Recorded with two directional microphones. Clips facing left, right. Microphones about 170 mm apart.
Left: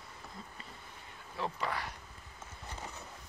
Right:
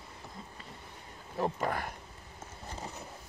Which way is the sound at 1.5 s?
50° right (ahead or behind).